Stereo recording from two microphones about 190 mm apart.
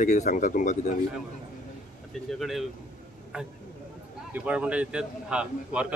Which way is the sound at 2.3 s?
Centre (ahead or behind).